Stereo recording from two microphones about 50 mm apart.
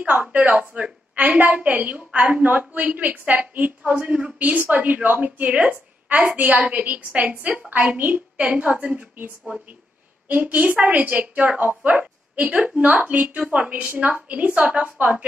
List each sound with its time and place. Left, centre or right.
0.0 s a woman's voice: right